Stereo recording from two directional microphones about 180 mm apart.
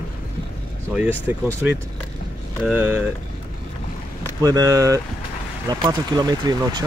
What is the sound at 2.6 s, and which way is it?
Speech, 10° right (ahead or behind).